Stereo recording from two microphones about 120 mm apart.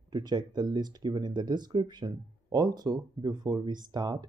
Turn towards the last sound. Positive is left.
turn(degrees=-35)  # may be behind; listen again after turning